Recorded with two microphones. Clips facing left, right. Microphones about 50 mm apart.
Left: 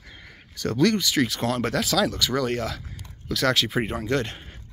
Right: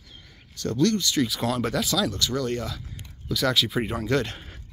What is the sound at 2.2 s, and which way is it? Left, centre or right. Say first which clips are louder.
Speech: left 2 dB; left.